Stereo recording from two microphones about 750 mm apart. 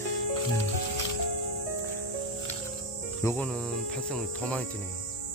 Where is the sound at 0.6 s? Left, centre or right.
Left.